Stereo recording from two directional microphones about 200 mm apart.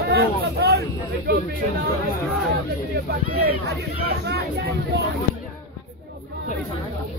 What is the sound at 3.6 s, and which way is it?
Speech, 50° right (ahead or behind).